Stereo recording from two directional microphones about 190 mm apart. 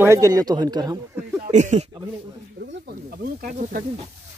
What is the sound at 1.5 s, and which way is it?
Speech, 40° right (ahead or behind).